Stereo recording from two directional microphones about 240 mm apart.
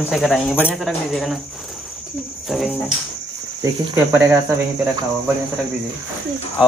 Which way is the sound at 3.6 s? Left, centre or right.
Centre.